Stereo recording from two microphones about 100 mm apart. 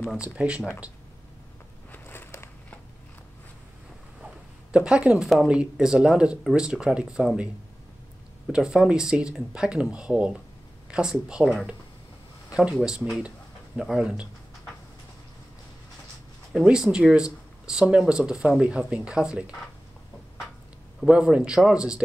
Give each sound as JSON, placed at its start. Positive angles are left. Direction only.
{"t": 0.2, "sound": "speech", "side_deg": -10}
{"t": 1.9, "sound": "a sound", "side_deg": 20}
{"t": 4.7, "sound": "speech", "side_deg": -10}
{"t": 8.5, "sound": "speech", "side_deg": -10}
{"t": 12.4, "sound": "a sound", "side_deg": -10}
{"t": 12.7, "sound": "speech", "side_deg": -5}
{"t": 16.5, "sound": "speech", "side_deg": -5}
{"t": 21.1, "sound": "speech", "side_deg": -10}